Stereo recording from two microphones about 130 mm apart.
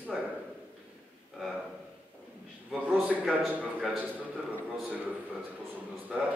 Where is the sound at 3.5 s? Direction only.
5° right (ahead or behind).